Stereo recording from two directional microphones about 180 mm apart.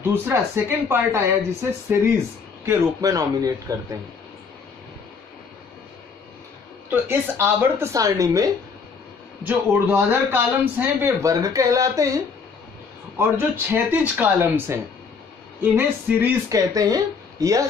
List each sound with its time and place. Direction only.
0.0 s speech: 10° right (ahead or behind)
6.9 s speech: 10° right (ahead or behind)
13.2 s speech: 10° right (ahead or behind)